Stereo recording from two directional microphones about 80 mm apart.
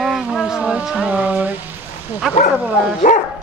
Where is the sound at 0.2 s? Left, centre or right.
Centre.